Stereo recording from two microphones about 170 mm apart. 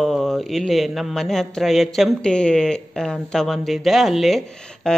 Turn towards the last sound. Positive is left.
turn(degrees=5)  # may be behind; listen again after turning